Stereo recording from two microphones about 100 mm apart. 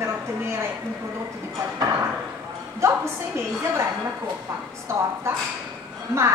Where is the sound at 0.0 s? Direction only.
25° right (ahead or behind).